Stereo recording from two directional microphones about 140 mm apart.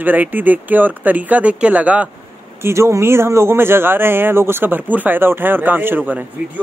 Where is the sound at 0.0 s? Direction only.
15° right (ahead or behind).